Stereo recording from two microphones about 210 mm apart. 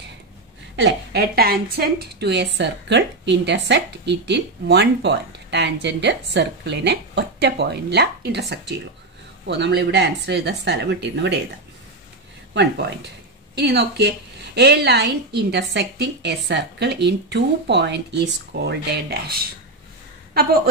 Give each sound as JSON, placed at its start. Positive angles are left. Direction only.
{"t": 0.7, "sound": "a woman's voice", "side_deg": -50}
{"t": 13.6, "sound": "a woman's voice", "side_deg": -50}